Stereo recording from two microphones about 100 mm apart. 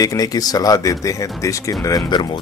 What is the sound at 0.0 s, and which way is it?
Speech, 40° left (ahead or behind).